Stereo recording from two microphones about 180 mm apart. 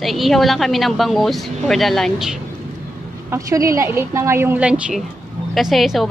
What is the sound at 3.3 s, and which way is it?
A woman's voice, 15° right (ahead or behind).